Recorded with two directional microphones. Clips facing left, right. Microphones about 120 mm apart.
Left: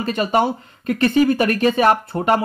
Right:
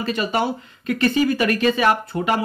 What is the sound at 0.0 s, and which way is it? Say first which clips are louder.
Speech: left 4 dB; 45° left (ahead or behind).